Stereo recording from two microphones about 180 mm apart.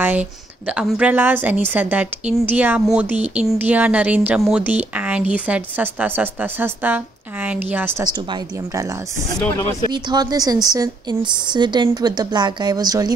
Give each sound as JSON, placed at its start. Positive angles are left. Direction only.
{"t": 0.0, "sound": "a woman's voice", "side_deg": -10}
{"t": 9.4, "sound": "speech", "side_deg": 15}
{"t": 9.8, "sound": "a woman's voice", "side_deg": -25}